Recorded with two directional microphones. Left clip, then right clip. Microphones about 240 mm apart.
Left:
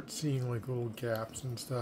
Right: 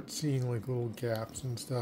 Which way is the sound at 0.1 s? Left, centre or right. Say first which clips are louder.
Right 2 dB; centre.